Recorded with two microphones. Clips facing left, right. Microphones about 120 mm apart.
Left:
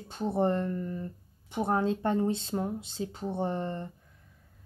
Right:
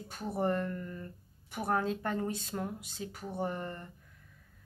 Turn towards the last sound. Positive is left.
turn(degrees=25)  # may be behind; listen again after turning